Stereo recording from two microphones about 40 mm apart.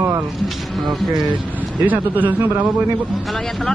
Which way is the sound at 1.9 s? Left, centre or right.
Right.